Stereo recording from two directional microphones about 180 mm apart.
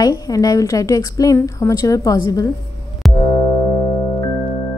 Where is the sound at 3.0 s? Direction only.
Centre (ahead or behind).